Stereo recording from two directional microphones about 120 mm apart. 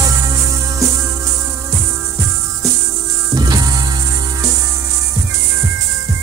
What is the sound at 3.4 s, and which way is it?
Music, 35° right (ahead or behind).